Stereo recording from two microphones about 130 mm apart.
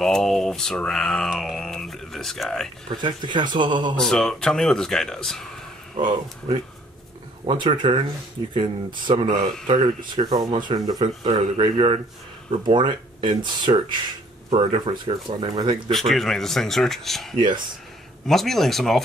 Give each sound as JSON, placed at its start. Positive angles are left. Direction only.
{"t": 0.0, "sound": "speech", "side_deg": 5}
{"t": 2.9, "sound": "speech", "side_deg": -35}
{"t": 3.9, "sound": "speech", "side_deg": 5}
{"t": 5.9, "sound": "speech", "side_deg": -40}
{"t": 15.9, "sound": "speech", "side_deg": 0}